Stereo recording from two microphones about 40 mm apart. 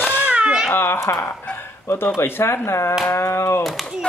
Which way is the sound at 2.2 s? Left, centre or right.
Left.